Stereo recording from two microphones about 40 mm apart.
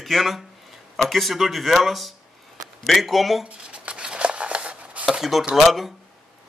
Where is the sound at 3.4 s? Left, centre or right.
Right.